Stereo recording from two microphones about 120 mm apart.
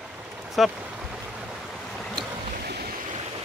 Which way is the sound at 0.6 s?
Centre (ahead or behind).